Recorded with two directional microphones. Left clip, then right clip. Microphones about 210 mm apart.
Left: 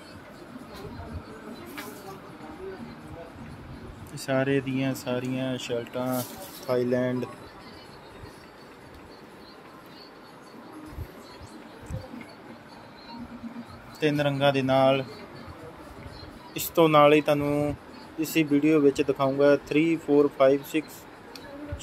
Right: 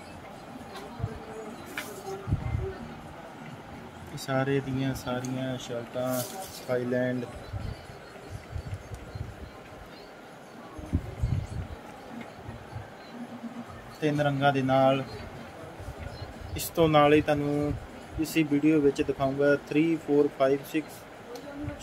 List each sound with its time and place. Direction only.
4.1 s speech: 15° left (ahead or behind)
13.9 s speech: 20° left (ahead or behind)
16.5 s speech: 15° left (ahead or behind)